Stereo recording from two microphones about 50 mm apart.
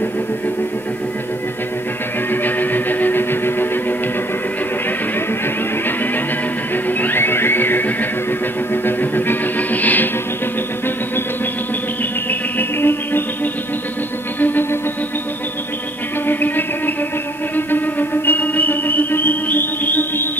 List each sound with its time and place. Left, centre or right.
2.4 s music: left
6.9 s music: left
12.5 s music: left
14.4 s music: left
16.3 s music: left